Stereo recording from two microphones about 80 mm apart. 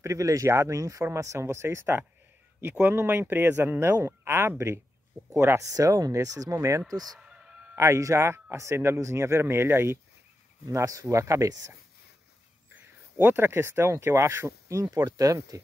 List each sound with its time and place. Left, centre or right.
0.0 s speech: right
7.2 s chicken: centre
7.7 s speech: right
10.7 s speech: right
12.7 s speech: right